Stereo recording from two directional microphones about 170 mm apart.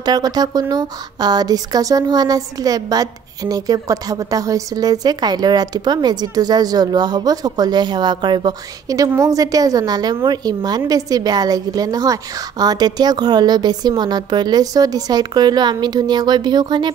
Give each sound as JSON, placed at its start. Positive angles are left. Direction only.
{"t": 0.0, "sound": "a woman's voice", "side_deg": -25}